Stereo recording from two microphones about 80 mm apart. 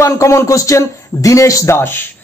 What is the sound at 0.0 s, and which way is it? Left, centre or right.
A man's voice, left.